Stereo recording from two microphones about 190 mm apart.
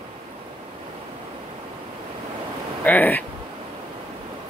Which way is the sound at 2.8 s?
10° left (ahead or behind).